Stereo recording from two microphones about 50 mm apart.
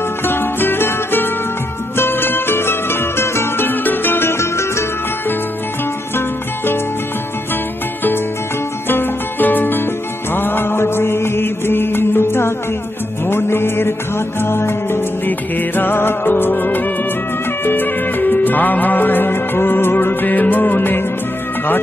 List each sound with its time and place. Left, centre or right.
0.2 s music: left
6.1 s music: left
8.8 s music: left
10.3 s mantra: left
13.3 s music: left
15.2 s music: left